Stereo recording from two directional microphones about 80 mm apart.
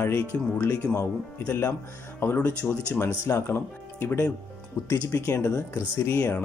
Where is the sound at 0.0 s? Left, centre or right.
Left.